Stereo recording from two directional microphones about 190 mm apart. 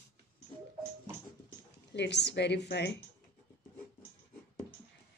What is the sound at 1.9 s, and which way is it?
A woman's voice, 65° left (ahead or behind).